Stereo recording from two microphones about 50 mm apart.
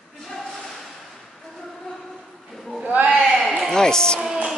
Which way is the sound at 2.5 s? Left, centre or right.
Centre.